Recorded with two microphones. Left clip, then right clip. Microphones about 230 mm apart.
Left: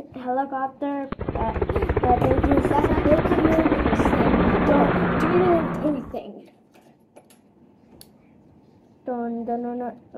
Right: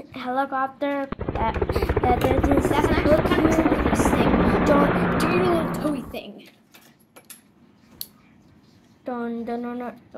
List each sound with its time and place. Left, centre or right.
0.1 s a woman's voice: right
1.1 s speech: centre
1.5 s helicopter: centre
9.1 s speech: right